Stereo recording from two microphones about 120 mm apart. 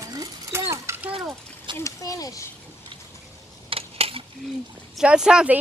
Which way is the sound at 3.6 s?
55° right (ahead or behind).